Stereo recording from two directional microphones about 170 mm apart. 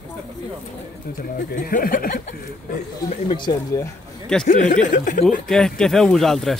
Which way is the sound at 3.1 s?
30° left (ahead or behind).